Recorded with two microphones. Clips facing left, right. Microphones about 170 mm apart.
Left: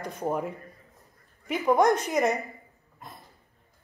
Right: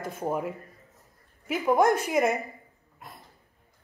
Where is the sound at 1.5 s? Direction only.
5° right (ahead or behind).